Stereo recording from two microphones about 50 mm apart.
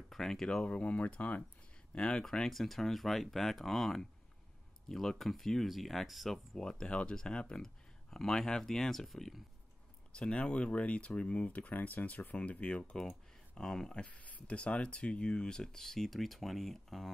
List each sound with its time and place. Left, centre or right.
0.1 s speech: centre
0.7 s speech: left
2.5 s speech: centre
6.6 s speech: centre
10.1 s speech: left
13.6 s speech: centre